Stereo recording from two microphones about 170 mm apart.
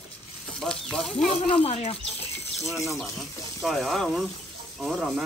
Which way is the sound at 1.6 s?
35° left (ahead or behind).